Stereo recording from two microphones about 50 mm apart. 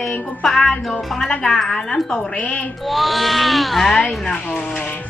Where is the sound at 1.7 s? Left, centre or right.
Centre.